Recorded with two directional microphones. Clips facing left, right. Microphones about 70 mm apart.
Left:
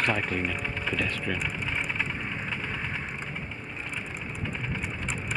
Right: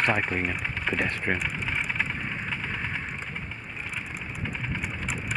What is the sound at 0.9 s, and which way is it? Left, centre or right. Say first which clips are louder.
Speech: right 3 dB; right.